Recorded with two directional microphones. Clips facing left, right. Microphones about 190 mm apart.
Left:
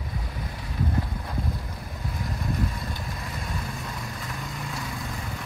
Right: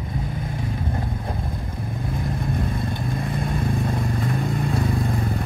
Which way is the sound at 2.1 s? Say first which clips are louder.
Right 4 dB; 55° right (ahead or behind).